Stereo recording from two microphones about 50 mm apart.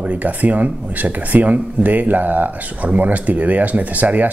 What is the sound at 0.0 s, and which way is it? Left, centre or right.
Speech, right.